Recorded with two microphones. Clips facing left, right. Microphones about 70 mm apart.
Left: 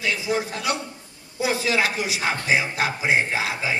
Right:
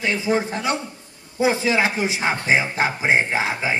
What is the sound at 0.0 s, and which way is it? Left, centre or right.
A man's voice, right.